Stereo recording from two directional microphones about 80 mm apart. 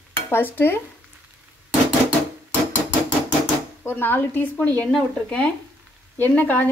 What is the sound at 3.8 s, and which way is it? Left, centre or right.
A woman's voice, left.